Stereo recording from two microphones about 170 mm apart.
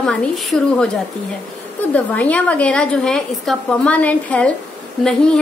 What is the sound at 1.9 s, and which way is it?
A woman's voice, 10° left (ahead or behind).